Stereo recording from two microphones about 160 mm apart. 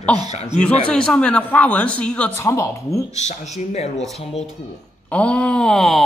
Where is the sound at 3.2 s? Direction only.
45° left (ahead or behind).